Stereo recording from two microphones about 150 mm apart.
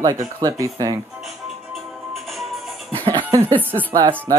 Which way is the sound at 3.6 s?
15° right (ahead or behind).